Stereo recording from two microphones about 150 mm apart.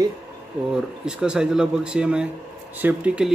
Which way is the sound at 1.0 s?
5° right (ahead or behind).